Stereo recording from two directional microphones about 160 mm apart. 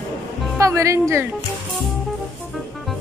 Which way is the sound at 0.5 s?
20° right (ahead or behind).